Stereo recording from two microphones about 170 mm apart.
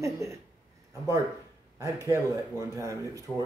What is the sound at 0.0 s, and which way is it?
Speech, 20° right (ahead or behind).